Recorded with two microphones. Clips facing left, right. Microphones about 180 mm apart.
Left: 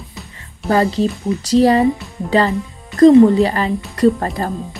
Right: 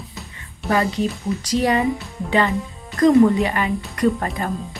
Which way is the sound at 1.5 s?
35° left (ahead or behind).